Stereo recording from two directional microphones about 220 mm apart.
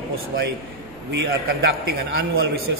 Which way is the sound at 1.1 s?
50° right (ahead or behind).